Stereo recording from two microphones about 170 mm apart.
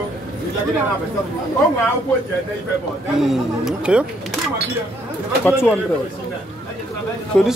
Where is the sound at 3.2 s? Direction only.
5° right (ahead or behind).